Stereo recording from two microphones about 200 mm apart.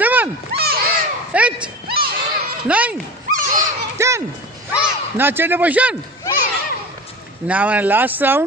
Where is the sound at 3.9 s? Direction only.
15° right (ahead or behind).